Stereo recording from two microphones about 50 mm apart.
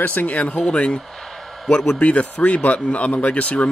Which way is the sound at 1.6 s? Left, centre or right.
Centre.